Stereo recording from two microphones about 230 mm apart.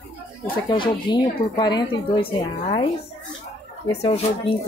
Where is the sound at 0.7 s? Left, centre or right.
Centre.